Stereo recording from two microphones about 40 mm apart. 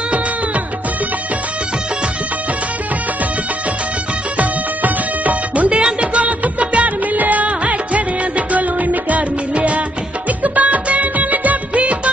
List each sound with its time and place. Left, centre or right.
4.4 s music: right
5.7 s music: right
7.6 s music of bollywood: right
9.6 s music: right
10.4 s music of bollywood: right